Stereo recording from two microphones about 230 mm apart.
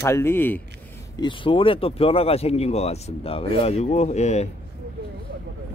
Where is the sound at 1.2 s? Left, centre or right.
Left.